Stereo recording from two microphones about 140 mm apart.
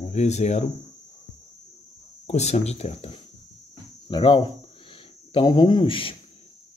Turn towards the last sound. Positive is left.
turn(degrees=40)  # may be behind; listen again after turning